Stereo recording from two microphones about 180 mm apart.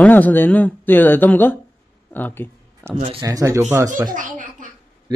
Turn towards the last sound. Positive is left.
turn(degrees=-50)  # may be behind; listen again after turning